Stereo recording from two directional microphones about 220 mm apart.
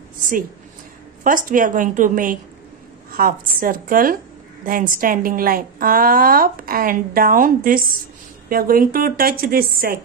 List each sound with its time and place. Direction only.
1.2 s a woman's voice: 40° right (ahead or behind)